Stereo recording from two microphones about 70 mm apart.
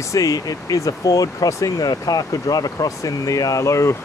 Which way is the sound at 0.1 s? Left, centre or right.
Left.